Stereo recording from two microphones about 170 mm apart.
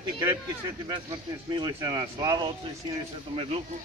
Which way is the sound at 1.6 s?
25° right (ahead or behind).